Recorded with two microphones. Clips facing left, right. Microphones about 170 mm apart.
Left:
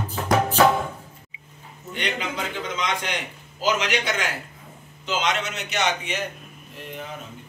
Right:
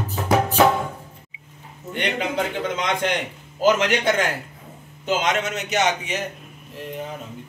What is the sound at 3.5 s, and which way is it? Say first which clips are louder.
A man's voice: right 5 dB; 50° right (ahead or behind).